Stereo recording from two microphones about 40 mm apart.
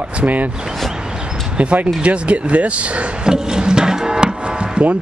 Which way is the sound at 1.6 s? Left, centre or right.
Right.